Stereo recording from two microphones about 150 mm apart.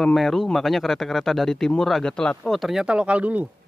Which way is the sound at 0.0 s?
Centre (ahead or behind).